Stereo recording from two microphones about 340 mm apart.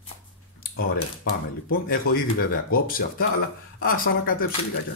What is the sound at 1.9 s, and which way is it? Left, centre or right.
Speech, left.